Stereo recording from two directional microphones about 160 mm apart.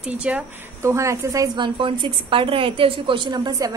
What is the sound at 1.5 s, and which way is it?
A woman's voice, 30° right (ahead or behind).